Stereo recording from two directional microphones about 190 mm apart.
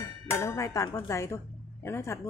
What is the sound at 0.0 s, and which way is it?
Speech, 15° left (ahead or behind).